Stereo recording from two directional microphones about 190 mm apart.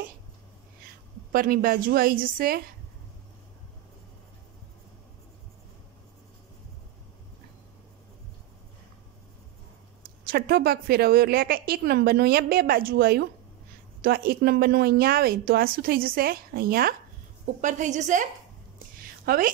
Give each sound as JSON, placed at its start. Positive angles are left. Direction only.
{"t": 1.3, "sound": "a woman's voice", "side_deg": -50}
{"t": 10.2, "sound": "a woman's voice", "side_deg": -55}
{"t": 17.6, "sound": "a woman's voice", "side_deg": -40}